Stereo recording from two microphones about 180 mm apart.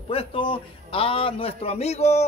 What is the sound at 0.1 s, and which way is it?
A man's voice, 30° left (ahead or behind).